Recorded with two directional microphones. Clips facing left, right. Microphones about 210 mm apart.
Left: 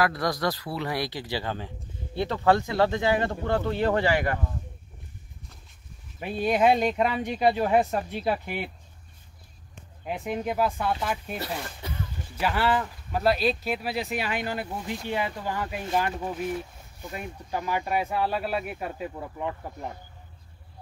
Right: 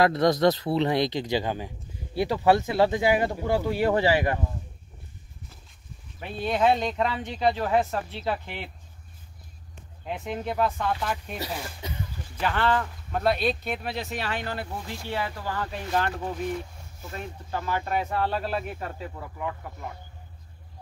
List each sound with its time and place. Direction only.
0.0 s speech: 20° right (ahead or behind)
6.1 s speech: 10° left (ahead or behind)
10.0 s speech: 10° left (ahead or behind)
11.3 s speech: 10° right (ahead or behind)
12.4 s speech: 10° left (ahead or behind)
17.1 s speech: 15° left (ahead or behind)